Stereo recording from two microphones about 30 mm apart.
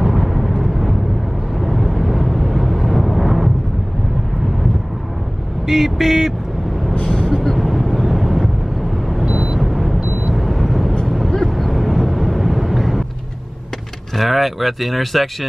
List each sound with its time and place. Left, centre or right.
0.0 s vehicle: centre
5.7 s vehicle: centre
6.9 s music: left
7.2 s vehicle: centre
7.5 s vehicle: centre
14.1 s speech: centre